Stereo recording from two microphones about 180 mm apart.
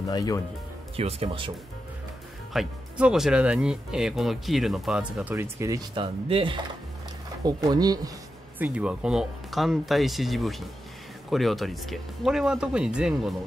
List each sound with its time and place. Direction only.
0.1 s speech: 20° left (ahead or behind)
0.9 s speech: 35° right (ahead or behind)
2.5 s speech: 5° right (ahead or behind); by 8.1 s 20° right (ahead or behind)
8.5 s speech: 10° right (ahead or behind)